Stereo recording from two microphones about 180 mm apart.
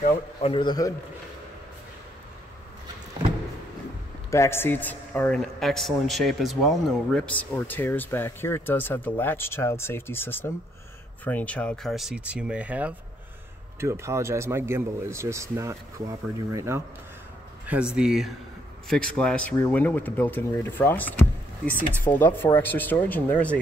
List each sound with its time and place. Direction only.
0.0 s a man's voice: 30° left (ahead or behind)
4.3 s a man's voice: 15° left (ahead or behind); by 16.8 s 15° right (ahead or behind)
17.6 s a man's voice: 5° right (ahead or behind)